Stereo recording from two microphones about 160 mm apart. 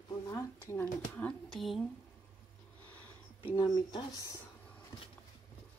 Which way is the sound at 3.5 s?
25° left (ahead or behind).